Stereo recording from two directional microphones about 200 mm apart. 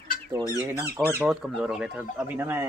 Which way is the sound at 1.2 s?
5° right (ahead or behind).